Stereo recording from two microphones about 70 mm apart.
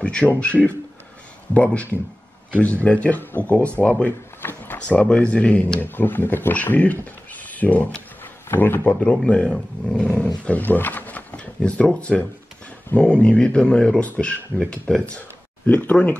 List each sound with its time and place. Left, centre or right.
0.0 s speech: centre
1.5 s speech: left
4.7 s speech: centre
5.9 s speech: left
9.0 s speech: centre
15.6 s speech: left